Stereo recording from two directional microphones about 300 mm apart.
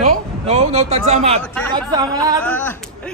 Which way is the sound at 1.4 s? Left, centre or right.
Centre.